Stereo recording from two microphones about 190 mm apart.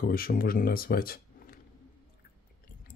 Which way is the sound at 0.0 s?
50° left (ahead or behind).